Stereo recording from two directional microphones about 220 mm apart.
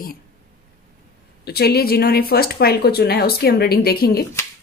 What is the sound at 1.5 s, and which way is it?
A woman's voice, 45° left (ahead or behind).